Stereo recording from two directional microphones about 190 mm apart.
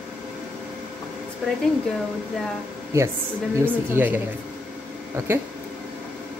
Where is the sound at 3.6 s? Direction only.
10° right (ahead or behind).